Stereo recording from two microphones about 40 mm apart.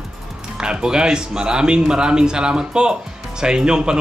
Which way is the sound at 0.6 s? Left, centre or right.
Centre.